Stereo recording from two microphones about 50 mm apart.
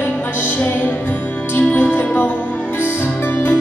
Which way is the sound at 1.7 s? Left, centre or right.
Left.